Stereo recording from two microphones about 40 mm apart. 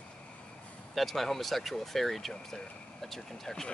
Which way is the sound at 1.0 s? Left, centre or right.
Centre.